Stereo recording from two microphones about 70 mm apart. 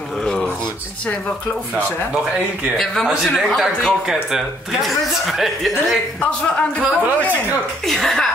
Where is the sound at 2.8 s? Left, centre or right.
Centre.